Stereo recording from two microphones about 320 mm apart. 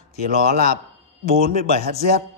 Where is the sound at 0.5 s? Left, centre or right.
Right.